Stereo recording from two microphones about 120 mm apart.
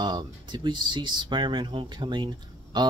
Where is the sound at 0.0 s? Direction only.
40° right (ahead or behind).